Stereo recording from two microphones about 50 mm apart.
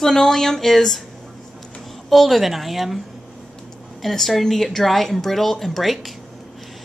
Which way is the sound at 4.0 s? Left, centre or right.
Centre.